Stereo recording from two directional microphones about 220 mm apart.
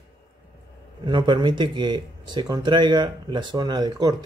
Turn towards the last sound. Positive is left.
turn(degrees=-20)  # may be behind; listen again after turning